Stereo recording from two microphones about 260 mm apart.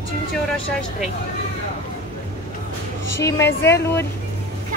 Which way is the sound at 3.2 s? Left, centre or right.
Centre.